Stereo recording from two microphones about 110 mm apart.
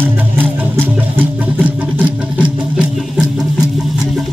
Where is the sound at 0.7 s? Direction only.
15° right (ahead or behind).